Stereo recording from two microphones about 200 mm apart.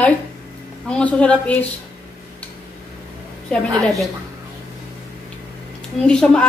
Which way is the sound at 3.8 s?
Centre (ahead or behind).